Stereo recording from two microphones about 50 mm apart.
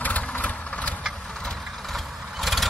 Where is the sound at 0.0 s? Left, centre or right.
Left.